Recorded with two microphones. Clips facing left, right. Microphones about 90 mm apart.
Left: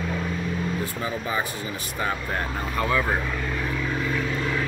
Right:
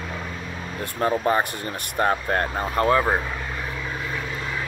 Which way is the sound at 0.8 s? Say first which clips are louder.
Right 6 dB; 60° right (ahead or behind).